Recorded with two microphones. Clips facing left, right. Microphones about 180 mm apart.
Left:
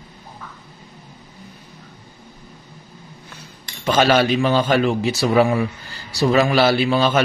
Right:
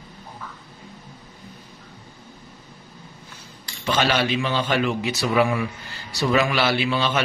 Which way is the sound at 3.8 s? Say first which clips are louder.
Left 6 dB; 45° left (ahead or behind).